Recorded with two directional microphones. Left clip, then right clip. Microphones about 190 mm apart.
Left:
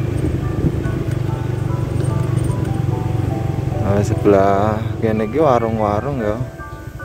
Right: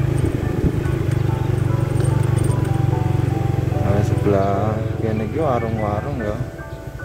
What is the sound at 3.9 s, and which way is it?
Music, 45° left (ahead or behind).